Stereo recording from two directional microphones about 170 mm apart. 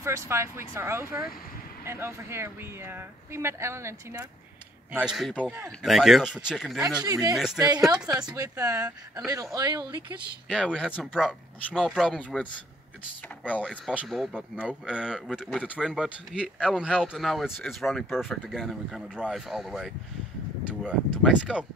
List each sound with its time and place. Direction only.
0.0 s speech: 15° right (ahead or behind)
4.9 s speech: 5° right (ahead or behind)
7.1 s speech: 20° right (ahead or behind)
10.5 s speech: 5° left (ahead or behind)
13.5 s speech: 5° left (ahead or behind)
21.2 s speech: 5° right (ahead or behind)